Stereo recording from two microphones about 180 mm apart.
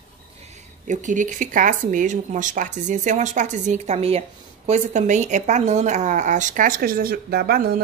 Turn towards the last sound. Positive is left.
turn(degrees=-60)  # may be behind; listen again after turning